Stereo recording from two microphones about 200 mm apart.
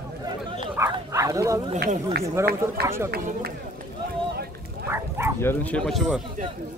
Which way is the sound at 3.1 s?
50° right (ahead or behind).